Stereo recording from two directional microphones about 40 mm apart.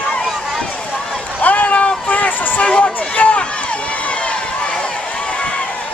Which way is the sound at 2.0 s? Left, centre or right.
Left.